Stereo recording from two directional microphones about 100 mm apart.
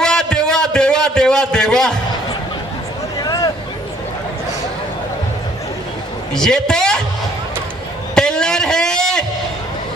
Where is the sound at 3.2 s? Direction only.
40° left (ahead or behind).